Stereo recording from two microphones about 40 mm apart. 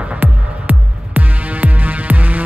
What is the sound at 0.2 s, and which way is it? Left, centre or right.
Music, right.